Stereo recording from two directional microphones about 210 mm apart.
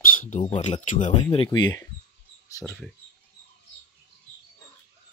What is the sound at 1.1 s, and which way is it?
Speech, 25° left (ahead or behind).